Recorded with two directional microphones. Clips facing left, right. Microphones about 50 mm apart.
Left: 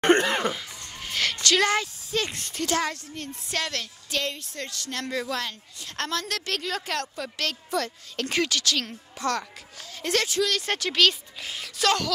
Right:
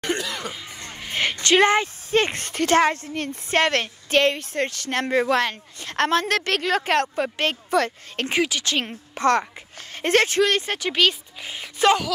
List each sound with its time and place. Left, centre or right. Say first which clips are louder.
0.0 s cough: left 6 dB; left
0.6 s speech: right 3 dB; right
7.7 s speech: right 7 dB; right
8.3 s speech: right 3 dB; centre
8.6 s speech: right 3 dB; right
9.1 s speech: right 8 dB; right
10.7 s speech: right 2 dB; centre